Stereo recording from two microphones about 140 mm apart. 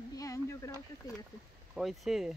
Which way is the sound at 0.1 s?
25° left (ahead or behind).